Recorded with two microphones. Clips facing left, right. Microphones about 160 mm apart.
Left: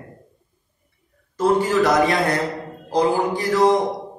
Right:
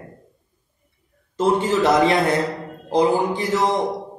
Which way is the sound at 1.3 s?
25° right (ahead or behind).